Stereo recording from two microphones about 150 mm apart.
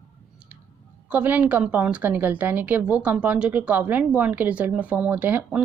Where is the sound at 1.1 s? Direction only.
10° right (ahead or behind).